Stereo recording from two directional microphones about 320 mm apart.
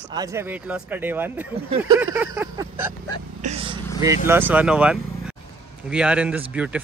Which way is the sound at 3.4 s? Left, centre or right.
Centre.